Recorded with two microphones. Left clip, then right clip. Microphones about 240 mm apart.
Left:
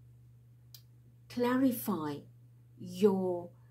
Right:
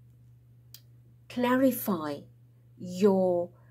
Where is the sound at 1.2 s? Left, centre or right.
Right.